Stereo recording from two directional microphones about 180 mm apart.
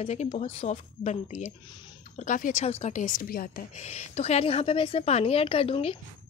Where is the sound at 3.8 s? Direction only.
40° left (ahead or behind).